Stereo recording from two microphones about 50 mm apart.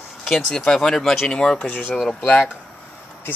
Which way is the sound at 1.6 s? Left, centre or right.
Left.